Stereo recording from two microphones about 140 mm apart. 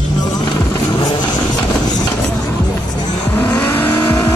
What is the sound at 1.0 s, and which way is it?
Vehicle, 30° left (ahead or behind).